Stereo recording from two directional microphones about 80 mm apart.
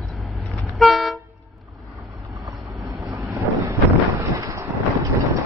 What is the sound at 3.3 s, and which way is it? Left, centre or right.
Wind noise, right.